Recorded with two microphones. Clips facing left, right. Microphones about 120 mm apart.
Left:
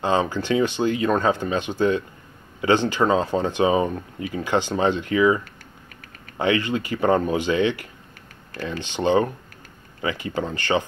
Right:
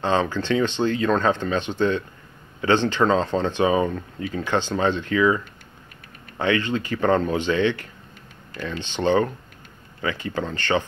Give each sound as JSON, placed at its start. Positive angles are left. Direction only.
{"t": 0.0, "sound": "speech", "side_deg": 15}